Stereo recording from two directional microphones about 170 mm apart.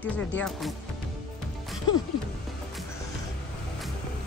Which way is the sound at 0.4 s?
Centre (ahead or behind).